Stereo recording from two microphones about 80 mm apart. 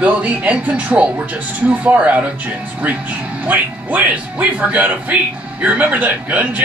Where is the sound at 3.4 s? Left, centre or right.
Right.